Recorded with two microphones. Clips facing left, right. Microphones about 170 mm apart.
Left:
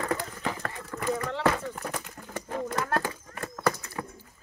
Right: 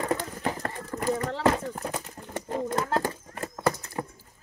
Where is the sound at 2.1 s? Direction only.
25° right (ahead or behind).